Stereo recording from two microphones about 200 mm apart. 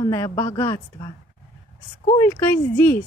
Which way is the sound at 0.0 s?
15° left (ahead or behind).